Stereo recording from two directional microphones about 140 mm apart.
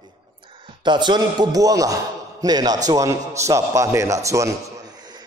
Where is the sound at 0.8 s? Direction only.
35° right (ahead or behind).